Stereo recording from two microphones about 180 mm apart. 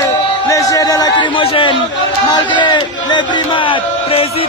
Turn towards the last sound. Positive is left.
turn(degrees=30)  # may be behind; listen again after turning